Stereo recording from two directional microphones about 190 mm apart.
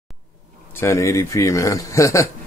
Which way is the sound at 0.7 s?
15° left (ahead or behind).